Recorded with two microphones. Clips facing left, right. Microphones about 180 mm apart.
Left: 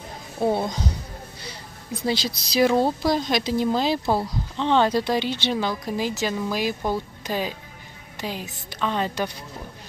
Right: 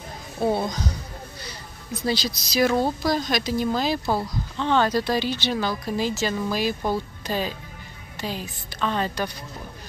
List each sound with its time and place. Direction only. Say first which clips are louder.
0.6 s speech: even; 25° left (ahead or behind)
2.0 s a woman's voice: even; 25° left (ahead or behind)